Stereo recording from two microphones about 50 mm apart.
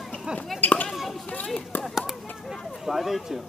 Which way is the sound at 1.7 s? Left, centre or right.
Left.